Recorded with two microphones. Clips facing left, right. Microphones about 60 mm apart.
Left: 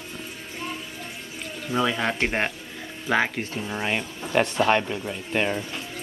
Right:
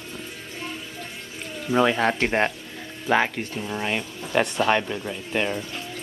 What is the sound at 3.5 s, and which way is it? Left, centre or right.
Speech, centre.